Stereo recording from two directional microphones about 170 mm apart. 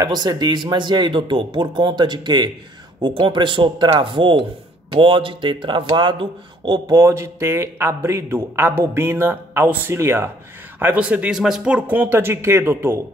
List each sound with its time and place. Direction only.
0.0 s a man's voice: 25° right (ahead or behind)